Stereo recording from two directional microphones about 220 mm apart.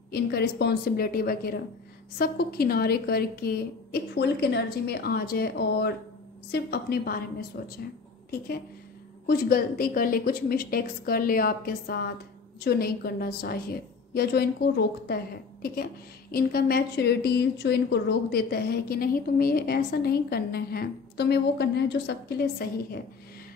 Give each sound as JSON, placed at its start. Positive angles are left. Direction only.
{"t": 0.1, "sound": "a woman's voice", "side_deg": 45}
{"t": 9.2, "sound": "a woman's voice", "side_deg": 45}